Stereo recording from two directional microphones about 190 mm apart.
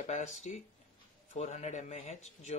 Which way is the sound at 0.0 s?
35° left (ahead or behind).